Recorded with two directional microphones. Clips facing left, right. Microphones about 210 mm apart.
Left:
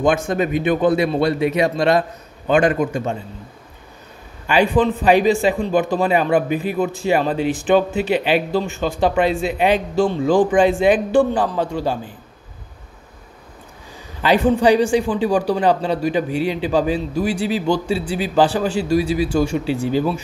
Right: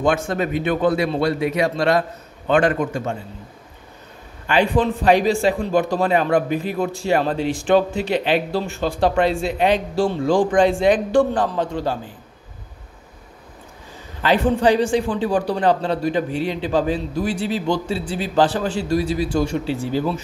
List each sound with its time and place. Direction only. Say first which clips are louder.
0.3 s a man's voice: left 3 dB; 15° left (ahead or behind)
4.5 s a man's voice: left 2 dB; 5° left (ahead or behind)
14.2 s a man's voice: left 2 dB; 10° left (ahead or behind)